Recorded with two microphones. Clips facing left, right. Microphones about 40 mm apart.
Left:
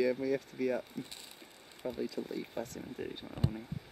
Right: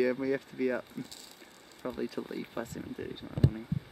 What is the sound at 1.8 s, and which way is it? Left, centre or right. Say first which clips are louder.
Speech: right 1 dB; right.